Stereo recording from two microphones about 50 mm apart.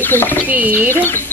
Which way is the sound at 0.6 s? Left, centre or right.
Right.